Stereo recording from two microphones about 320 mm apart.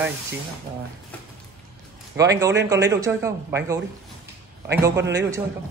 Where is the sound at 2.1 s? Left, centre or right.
Centre.